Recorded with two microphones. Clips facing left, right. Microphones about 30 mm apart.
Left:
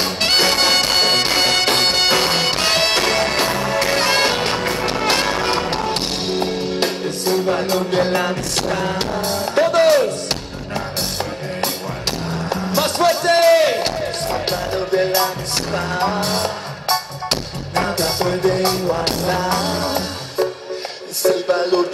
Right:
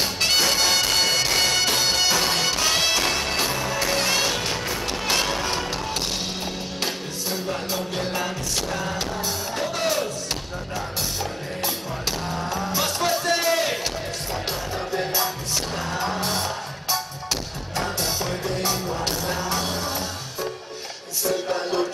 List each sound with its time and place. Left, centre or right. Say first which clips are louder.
0.0 s music: left 5 dB; left
12.4 s music: left 7 dB; left
21.2 s a sound: left 8 dB; left